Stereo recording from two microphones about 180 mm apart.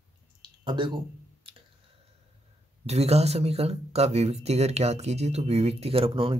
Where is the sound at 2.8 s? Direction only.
35° right (ahead or behind).